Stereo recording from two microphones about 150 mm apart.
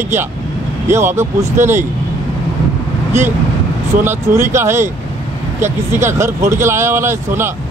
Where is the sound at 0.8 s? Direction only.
15° right (ahead or behind).